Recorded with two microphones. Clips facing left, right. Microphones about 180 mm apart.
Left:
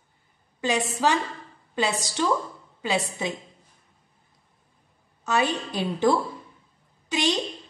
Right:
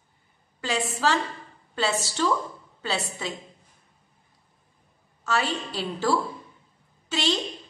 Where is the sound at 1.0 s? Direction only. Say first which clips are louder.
Left 1 dB; 15° left (ahead or behind).